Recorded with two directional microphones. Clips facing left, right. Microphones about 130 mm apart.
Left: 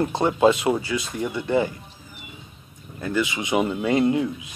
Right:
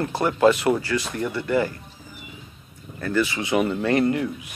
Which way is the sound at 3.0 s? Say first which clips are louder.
Right 1 dB; 15° left (ahead or behind).